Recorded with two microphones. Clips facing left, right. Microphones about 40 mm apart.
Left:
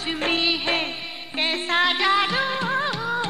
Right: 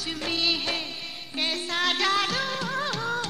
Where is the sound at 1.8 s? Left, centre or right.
Left.